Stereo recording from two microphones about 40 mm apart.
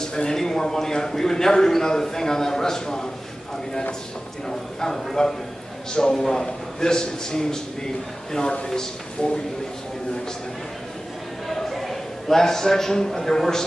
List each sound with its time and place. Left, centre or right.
0.0 s a man's voice: centre
4.5 s a man's voice: centre
11.4 s a man's voice: centre